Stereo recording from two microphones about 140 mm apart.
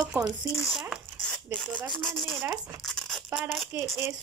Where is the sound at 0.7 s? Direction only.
Centre (ahead or behind).